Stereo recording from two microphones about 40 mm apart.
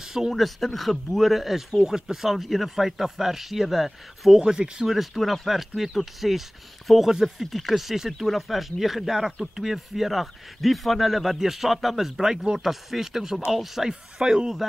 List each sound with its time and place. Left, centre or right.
0.0 s speech: centre
0.3 s speech: centre
4.4 s speech: right
4.8 s speech: centre
7.4 s speech: centre